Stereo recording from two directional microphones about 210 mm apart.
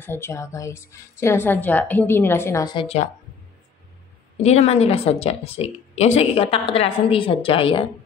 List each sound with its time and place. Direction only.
0.0 s a woman's voice: 10° left (ahead or behind); by 3.1 s 25° left (ahead or behind)
4.4 s speech: 30° left (ahead or behind)